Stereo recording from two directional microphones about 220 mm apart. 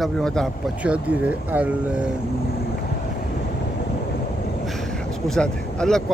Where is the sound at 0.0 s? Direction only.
Centre (ahead or behind).